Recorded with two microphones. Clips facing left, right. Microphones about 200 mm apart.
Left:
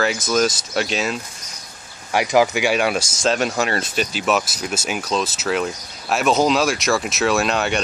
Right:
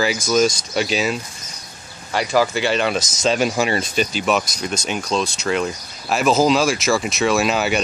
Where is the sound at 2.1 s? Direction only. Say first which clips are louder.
Left 2 dB; 15° left (ahead or behind).